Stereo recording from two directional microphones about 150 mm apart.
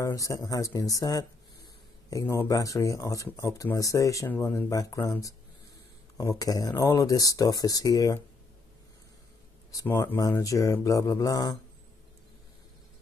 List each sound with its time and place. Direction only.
0.0 s speech: 20° left (ahead or behind)
6.1 s speech: 25° left (ahead or behind)
9.7 s speech: 20° left (ahead or behind)